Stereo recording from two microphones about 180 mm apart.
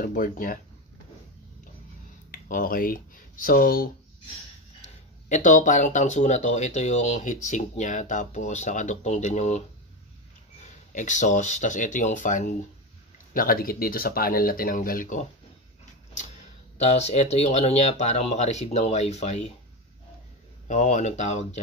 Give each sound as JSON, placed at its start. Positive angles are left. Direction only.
{"t": 0.0, "sound": "speech", "side_deg": 50}
{"t": 2.3, "sound": "speech", "side_deg": 50}
{"t": 4.8, "sound": "speech", "side_deg": 40}
{"t": 10.6, "sound": "speech", "side_deg": 45}
{"t": 16.7, "sound": "speech", "side_deg": 40}
{"t": 20.6, "sound": "speech", "side_deg": 40}